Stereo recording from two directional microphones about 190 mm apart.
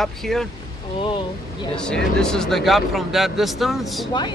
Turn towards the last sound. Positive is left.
turn(degrees=0)  # may be behind; listen again after turning